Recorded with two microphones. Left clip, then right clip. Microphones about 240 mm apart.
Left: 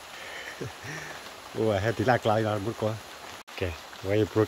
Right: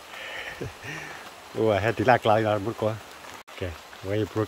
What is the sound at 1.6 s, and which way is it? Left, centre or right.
Speech, centre.